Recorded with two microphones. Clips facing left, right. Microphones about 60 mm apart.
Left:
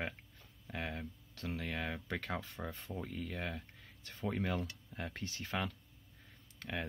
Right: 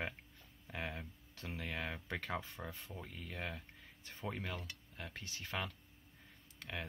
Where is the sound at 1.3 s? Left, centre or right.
Centre.